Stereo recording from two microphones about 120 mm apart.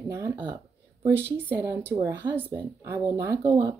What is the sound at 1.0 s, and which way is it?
Speech, 25° right (ahead or behind).